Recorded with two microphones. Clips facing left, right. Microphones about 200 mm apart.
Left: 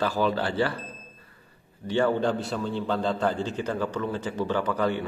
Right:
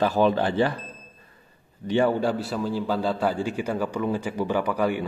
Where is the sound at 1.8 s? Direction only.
15° right (ahead or behind).